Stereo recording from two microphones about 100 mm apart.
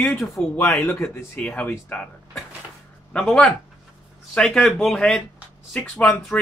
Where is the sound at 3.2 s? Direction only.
Centre (ahead or behind).